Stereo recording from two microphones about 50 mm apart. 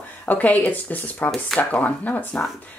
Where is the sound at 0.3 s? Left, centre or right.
Left.